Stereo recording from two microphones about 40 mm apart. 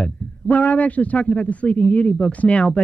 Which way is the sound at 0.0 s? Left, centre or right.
Left.